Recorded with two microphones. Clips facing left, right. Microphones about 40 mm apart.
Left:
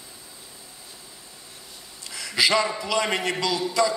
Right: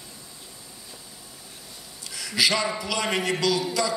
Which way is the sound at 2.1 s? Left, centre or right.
Centre.